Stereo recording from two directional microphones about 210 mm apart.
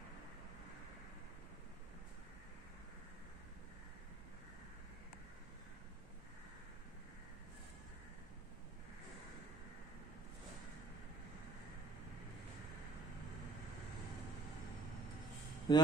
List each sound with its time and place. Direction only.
15.7 s a man's voice: 20° left (ahead or behind)